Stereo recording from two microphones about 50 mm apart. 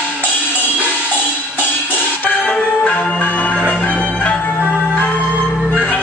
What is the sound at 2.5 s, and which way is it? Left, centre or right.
Music, left.